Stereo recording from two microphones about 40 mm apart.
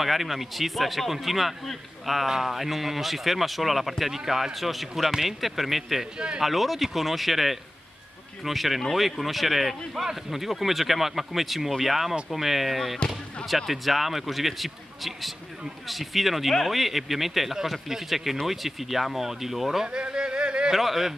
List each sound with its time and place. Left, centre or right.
0.0 s a man's voice: centre
2.2 s a man's voice: centre
6.1 s speech: right
6.4 s a man's voice: centre
19.9 s a sound: right
20.7 s a man's voice: centre